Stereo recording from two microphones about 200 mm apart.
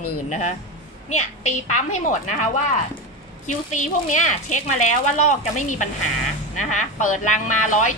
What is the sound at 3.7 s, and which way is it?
A woman's voice, 40° left (ahead or behind).